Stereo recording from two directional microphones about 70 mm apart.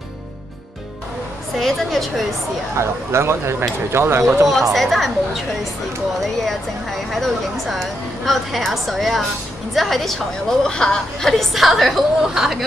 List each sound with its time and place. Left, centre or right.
1.6 s speech: centre
2.8 s speech: right
4.7 s speech: centre